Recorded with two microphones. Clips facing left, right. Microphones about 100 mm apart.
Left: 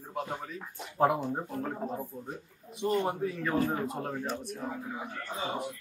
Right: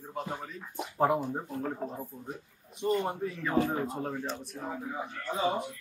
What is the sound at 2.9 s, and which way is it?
Speech, centre (ahead or behind).